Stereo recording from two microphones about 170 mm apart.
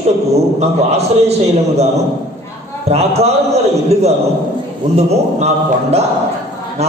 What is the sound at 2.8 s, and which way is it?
A man's voice, 40° right (ahead or behind).